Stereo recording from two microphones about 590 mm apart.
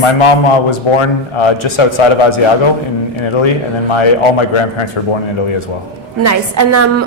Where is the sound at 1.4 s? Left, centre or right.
Left.